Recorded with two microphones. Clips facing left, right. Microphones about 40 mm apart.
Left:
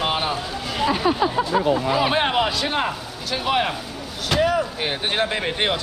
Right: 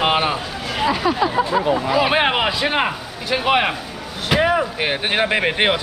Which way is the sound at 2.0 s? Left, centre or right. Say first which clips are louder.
Right 2 dB; right.